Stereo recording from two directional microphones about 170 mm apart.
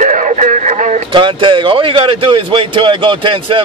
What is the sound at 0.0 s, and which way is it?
Music, 50° right (ahead or behind).